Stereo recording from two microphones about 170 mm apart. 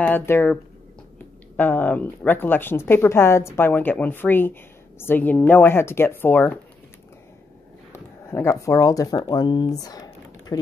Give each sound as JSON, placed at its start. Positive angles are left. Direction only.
{"t": 0.0, "sound": "speech", "side_deg": 10}
{"t": 1.6, "sound": "speech", "side_deg": 10}
{"t": 7.9, "sound": "speech", "side_deg": 15}